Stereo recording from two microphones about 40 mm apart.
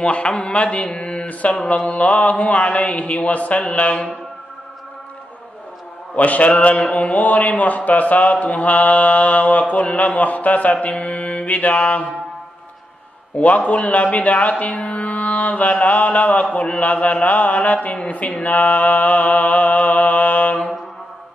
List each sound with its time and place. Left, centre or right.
0.0 s a man's voice: left
3.6 s mantra: left
6.1 s a man's voice: left
13.4 s a man's voice: left